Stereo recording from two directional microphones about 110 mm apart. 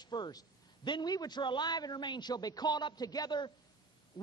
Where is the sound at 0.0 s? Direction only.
40° left (ahead or behind).